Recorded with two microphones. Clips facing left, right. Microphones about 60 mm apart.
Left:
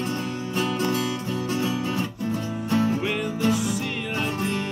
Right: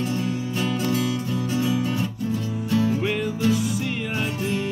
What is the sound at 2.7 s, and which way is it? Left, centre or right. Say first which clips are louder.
Music: right 1 dB; left.